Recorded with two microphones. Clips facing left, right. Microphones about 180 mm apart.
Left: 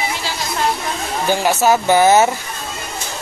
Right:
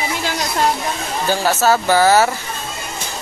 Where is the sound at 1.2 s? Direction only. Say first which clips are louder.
Left 1 dB; 15° left (ahead or behind).